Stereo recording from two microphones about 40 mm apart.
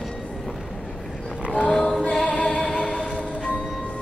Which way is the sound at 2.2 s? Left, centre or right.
Left.